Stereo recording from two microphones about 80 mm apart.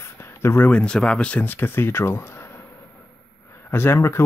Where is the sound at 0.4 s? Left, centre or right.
Left.